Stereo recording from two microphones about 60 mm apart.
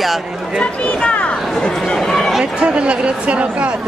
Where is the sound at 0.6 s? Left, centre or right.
Centre.